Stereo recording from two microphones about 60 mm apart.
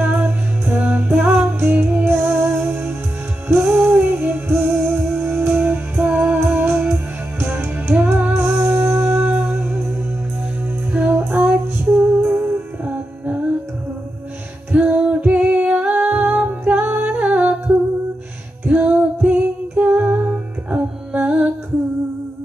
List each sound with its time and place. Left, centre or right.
0.1 s music: right
1.6 s music: right
10.9 s music: right
14.7 s music: right
17.0 s humming: right
18.7 s music: right